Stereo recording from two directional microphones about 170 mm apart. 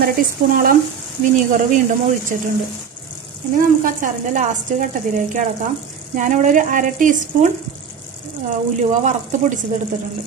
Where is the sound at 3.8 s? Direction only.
50° right (ahead or behind).